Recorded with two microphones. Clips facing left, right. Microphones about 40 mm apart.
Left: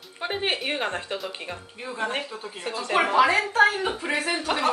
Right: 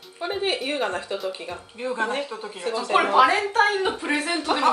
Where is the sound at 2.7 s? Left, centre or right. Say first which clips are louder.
Right 5 dB; left.